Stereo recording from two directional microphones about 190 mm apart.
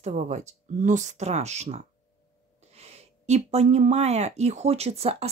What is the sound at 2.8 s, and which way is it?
Speech, 35° right (ahead or behind).